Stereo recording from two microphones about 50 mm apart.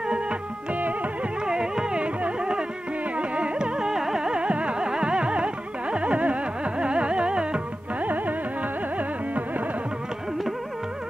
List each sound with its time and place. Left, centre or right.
0.0 s music: right
3.2 s carnatic music: right
8.0 s music: right